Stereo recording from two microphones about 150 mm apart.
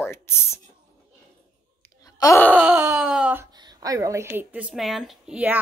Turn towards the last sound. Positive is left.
turn(degrees=-5)  # may be behind; listen again after turning